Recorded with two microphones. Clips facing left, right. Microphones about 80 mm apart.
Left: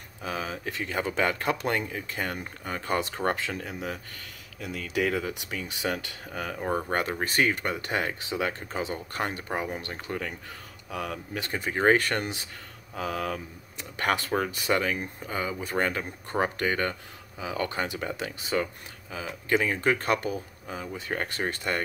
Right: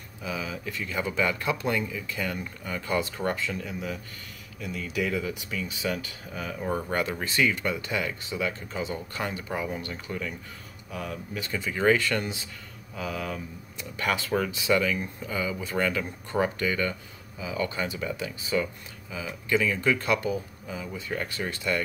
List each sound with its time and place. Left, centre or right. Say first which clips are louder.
0.2 s speech: left 1 dB; left
3.3 s speech: right 1 dB; left
6.6 s speech: even; left
8.2 s speech: left 1 dB; left
8.5 s speech: even; left
8.9 s speech: left 1 dB; left
11.5 s speech: left 1 dB; left
17.4 s speech: even; left